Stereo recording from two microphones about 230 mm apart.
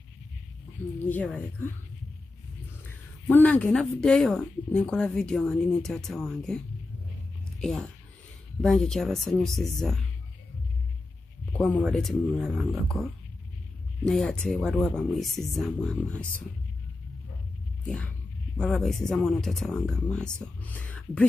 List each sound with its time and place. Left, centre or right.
1.0 s a woman's voice: centre
3.3 s speech: centre
7.6 s speech: centre
11.5 s speech: centre
17.8 s speech: centre